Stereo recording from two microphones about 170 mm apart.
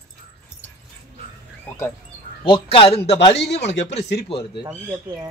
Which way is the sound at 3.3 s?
90° left.